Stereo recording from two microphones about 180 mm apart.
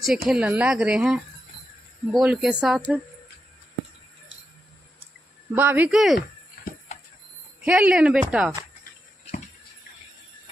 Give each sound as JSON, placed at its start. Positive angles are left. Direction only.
{"t": 0.0, "sound": "a woman's voice", "side_deg": -5}
{"t": 5.5, "sound": "speech", "side_deg": -10}
{"t": 6.1, "sound": "a sound", "side_deg": 45}
{"t": 7.6, "sound": "a woman's voice", "side_deg": -5}